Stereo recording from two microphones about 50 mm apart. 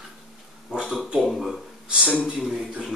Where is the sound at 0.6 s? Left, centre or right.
Centre.